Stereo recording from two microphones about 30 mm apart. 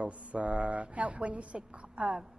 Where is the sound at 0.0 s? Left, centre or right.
Right.